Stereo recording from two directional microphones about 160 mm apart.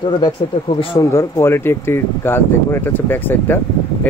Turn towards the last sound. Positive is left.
turn(degrees=10)  # may be behind; listen again after turning